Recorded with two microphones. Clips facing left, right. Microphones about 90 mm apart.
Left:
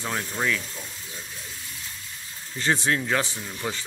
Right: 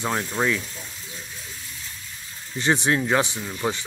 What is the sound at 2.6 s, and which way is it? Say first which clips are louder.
Speech: right 3 dB; 25° right (ahead or behind).